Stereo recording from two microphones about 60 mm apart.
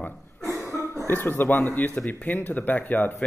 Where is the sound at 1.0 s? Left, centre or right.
Left.